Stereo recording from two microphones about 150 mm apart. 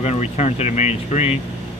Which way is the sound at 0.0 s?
45° left (ahead or behind).